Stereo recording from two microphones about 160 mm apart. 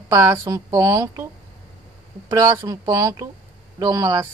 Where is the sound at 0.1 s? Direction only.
15° right (ahead or behind).